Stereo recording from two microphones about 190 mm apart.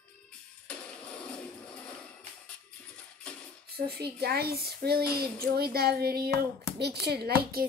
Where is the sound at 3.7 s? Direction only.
55° right (ahead or behind).